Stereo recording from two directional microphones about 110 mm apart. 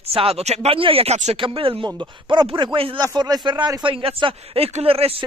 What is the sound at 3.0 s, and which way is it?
Speech, 35° right (ahead or behind).